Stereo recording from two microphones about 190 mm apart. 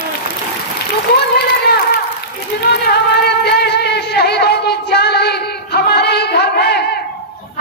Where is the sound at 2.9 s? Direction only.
60° left (ahead or behind).